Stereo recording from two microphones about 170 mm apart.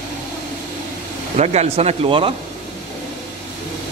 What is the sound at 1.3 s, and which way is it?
Speech, 40° right (ahead or behind).